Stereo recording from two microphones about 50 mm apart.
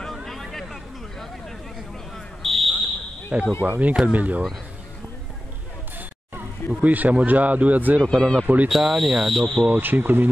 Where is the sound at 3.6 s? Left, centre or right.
Right.